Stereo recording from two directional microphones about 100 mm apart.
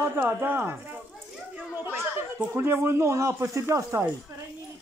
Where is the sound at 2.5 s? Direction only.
25° right (ahead or behind).